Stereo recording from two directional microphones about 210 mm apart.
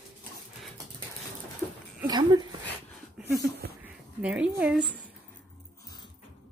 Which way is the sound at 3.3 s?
50° right (ahead or behind).